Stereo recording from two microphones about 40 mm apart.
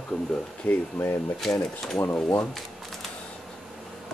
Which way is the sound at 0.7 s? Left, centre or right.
Left.